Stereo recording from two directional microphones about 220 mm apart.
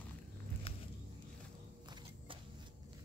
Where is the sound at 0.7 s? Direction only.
25° left (ahead or behind).